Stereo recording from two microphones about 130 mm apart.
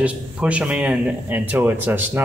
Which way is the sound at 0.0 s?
10° right (ahead or behind).